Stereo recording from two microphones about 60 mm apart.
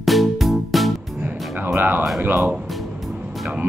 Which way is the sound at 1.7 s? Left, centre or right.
Right.